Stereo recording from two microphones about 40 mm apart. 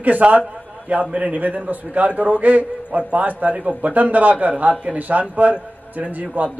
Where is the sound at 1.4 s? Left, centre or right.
Right.